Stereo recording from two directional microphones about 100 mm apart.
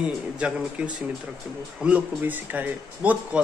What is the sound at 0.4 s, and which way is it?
A man's voice, 10° right (ahead or behind).